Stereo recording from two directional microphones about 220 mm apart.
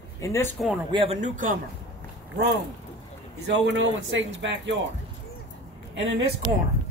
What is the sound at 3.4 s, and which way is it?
Speech, 55° right (ahead or behind).